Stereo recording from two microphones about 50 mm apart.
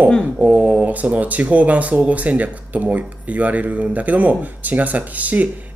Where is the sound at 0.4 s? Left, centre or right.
Right.